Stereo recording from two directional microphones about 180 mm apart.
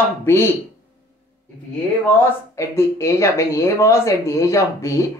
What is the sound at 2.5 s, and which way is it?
Speech, 15° left (ahead or behind).